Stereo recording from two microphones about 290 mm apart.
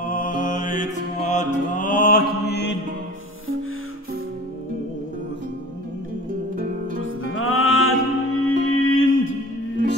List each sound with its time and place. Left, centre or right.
0.0 s music: left
6.5 s music: right
7.0 s music: left